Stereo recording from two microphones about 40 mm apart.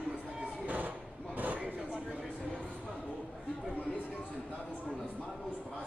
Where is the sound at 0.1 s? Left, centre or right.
Right.